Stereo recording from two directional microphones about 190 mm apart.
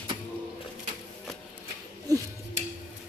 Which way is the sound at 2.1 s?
20° right (ahead or behind).